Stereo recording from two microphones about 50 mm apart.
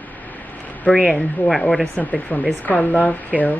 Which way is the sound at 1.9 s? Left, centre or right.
Left.